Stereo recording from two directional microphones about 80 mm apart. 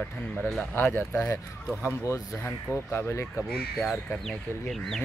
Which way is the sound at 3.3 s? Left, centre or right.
Centre.